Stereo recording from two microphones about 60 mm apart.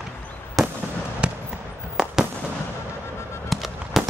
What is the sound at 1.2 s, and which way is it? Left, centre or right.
Basketball bounce, centre.